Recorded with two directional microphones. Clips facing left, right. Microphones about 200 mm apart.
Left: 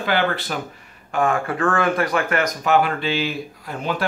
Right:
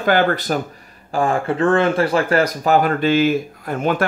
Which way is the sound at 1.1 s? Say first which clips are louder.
Right 2 dB; 30° right (ahead or behind).